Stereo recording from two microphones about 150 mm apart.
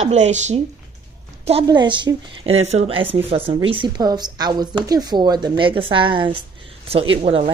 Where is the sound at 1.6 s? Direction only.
30° right (ahead or behind).